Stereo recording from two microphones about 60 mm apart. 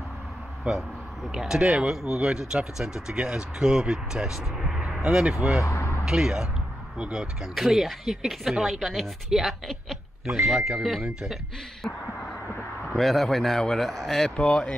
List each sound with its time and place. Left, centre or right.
1.3 s speech: centre
5.6 s a sound: left
6.0 s speech: centre
7.5 s a woman's voice: centre
10.4 s a woman's voice: centre
12.9 s a woman's voice: centre